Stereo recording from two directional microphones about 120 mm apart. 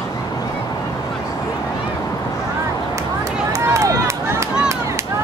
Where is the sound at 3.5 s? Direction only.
25° right (ahead or behind).